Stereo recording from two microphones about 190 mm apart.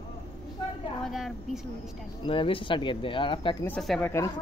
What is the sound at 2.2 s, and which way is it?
Speech, 30° left (ahead or behind).